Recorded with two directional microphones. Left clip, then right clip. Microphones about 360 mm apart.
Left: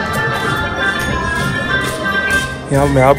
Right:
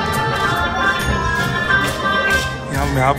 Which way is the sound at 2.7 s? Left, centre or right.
Centre.